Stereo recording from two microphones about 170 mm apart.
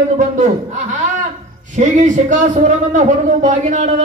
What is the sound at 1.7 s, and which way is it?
A man's voice, 45° right (ahead or behind).